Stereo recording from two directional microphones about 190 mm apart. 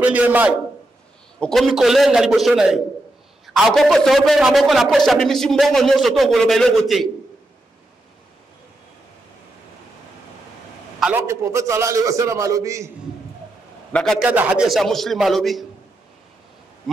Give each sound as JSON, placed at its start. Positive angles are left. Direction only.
{"t": 0.0, "sound": "a man's voice", "side_deg": -10}
{"t": 11.0, "sound": "a man's voice", "side_deg": -10}
{"t": 14.2, "sound": "a man's voice", "side_deg": -5}